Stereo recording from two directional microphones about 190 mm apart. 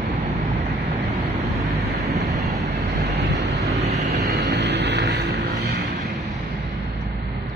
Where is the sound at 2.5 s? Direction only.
35° right (ahead or behind).